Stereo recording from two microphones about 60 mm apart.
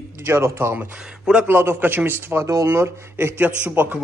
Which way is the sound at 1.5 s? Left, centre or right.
Right.